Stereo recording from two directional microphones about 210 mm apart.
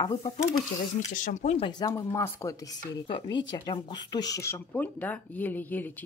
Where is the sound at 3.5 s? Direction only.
20° left (ahead or behind).